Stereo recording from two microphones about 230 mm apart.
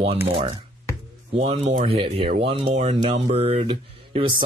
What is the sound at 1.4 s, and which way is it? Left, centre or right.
Speech, right.